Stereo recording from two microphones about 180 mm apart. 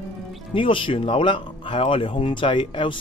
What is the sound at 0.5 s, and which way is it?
Speech, 30° left (ahead or behind).